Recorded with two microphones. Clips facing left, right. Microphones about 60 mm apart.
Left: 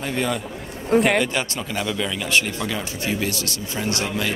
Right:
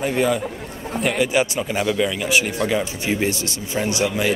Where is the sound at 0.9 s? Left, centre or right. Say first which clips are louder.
Left 5 dB; left.